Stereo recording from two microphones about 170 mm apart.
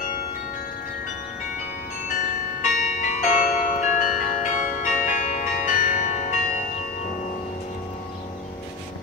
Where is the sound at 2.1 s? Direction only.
50° left (ahead or behind).